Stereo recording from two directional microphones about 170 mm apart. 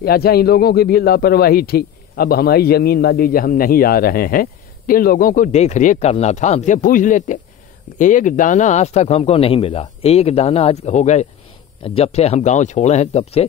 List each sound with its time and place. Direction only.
0.0 s a man's voice: 65° left (ahead or behind); by 13.5 s 35° left (ahead or behind)